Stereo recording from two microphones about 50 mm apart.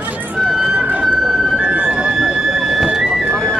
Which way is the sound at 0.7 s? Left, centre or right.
Right.